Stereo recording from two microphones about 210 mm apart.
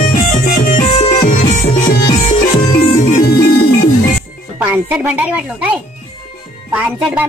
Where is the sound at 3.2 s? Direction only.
50° left (ahead or behind).